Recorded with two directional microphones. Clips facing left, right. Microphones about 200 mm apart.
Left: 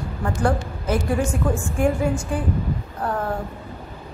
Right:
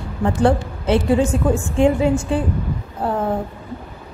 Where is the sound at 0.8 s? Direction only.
25° right (ahead or behind).